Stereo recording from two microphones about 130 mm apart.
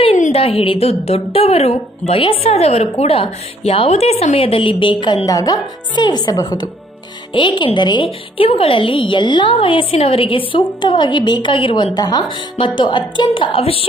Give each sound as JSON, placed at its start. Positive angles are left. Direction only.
{"t": 0.3, "sound": "a woman's voice", "side_deg": 45}